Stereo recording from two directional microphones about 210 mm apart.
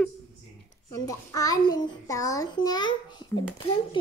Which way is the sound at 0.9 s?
15° left (ahead or behind).